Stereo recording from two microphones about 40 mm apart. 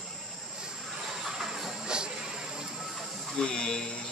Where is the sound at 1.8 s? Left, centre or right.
Right.